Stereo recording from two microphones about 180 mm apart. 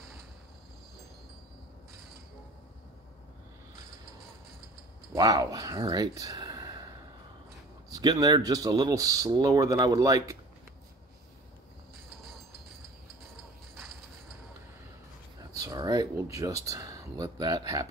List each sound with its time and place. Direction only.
5.1 s speech: 20° right (ahead or behind)
7.9 s speech: 20° right (ahead or behind)
15.5 s speech: 20° right (ahead or behind)